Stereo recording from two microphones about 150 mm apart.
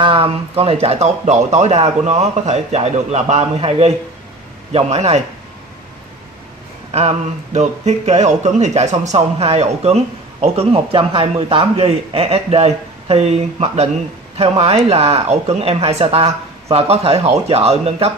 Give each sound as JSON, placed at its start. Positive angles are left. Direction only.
{"t": 0.0, "sound": "a man's voice", "side_deg": -40}
{"t": 6.9, "sound": "a man's voice", "side_deg": -45}